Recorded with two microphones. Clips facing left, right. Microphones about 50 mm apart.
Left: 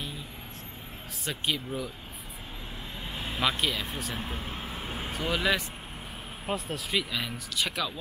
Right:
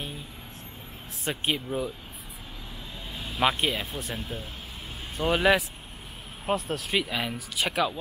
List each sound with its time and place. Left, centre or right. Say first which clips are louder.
1.2 s speech: right 3 dB; right
3.3 s speech: right 4 dB; right
4.2 s vehicle: left 1 dB; left
5.2 s speech: right 6 dB; right
6.4 s speech: right 5 dB; centre
6.9 s speech: right 2 dB; centre